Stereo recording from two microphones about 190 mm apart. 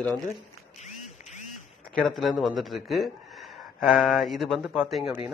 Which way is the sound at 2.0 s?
Centre (ahead or behind).